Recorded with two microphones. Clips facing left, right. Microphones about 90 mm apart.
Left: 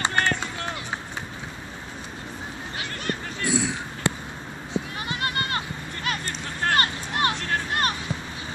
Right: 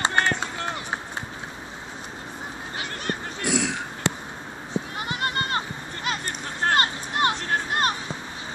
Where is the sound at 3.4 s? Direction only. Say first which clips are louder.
Even; 75° right (ahead or behind).